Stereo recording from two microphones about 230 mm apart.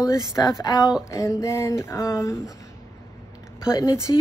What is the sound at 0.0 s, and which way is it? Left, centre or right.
A woman's voice, centre.